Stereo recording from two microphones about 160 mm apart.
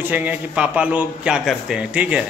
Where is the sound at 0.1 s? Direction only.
10° right (ahead or behind).